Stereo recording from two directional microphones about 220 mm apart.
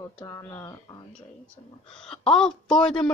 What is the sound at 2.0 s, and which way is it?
Speech, 5° left (ahead or behind).